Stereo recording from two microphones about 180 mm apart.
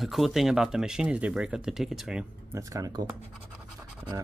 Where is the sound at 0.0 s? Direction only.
Centre (ahead or behind).